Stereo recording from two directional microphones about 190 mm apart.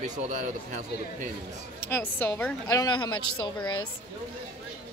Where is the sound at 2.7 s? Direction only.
20° left (ahead or behind).